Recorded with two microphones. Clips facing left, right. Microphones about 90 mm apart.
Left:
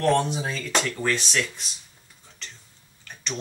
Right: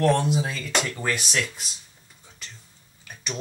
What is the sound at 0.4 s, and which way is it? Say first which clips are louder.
Speech: right 1 dB; 35° left (ahead or behind).